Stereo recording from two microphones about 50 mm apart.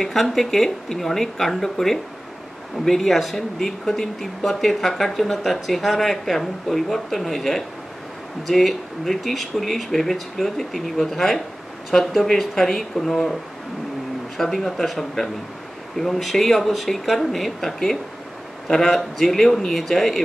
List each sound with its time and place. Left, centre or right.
0.0 s speech: centre